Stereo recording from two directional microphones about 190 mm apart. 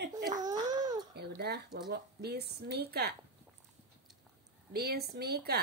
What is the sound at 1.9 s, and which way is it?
A woman's voice, 60° right (ahead or behind).